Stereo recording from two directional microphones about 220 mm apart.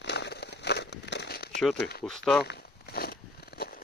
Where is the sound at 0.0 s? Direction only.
50° left (ahead or behind).